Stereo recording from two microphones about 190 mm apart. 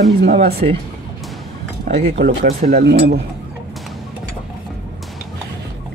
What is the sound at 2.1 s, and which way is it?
Speech, 55° right (ahead or behind).